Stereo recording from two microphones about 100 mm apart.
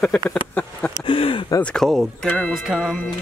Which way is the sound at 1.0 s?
60° left (ahead or behind).